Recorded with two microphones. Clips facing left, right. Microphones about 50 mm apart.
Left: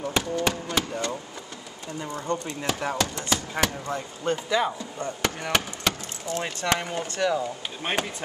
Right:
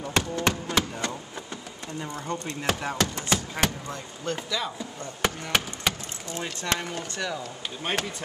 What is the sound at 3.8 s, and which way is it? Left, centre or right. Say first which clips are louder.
Speech: left 5 dB; left.